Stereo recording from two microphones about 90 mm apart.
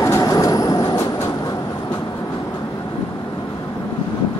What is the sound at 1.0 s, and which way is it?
Train, 40° left (ahead or behind).